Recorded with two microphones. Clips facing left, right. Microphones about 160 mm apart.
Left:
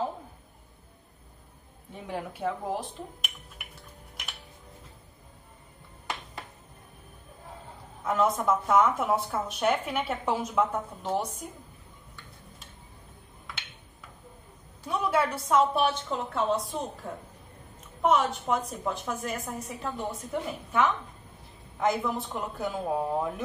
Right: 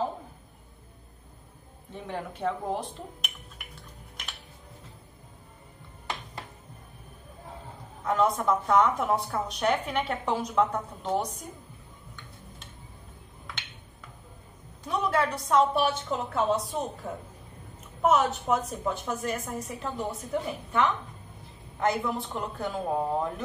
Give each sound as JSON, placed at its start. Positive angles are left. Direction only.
{"t": 2.0, "sound": "speech", "side_deg": 10}
{"t": 8.0, "sound": "speech", "side_deg": 0}
{"t": 14.9, "sound": "speech", "side_deg": 5}